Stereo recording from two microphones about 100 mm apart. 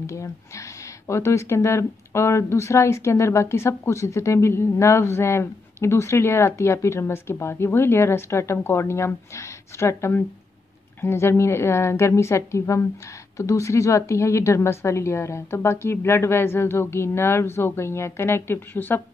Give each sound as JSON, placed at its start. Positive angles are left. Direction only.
{"t": 0.0, "sound": "speech", "side_deg": 30}